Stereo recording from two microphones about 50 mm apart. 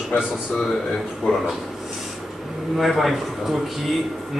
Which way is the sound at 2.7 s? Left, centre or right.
Centre.